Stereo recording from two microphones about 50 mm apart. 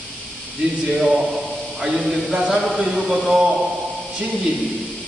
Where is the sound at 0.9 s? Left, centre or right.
Centre.